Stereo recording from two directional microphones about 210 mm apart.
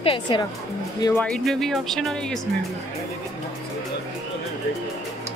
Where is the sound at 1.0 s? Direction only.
5° left (ahead or behind).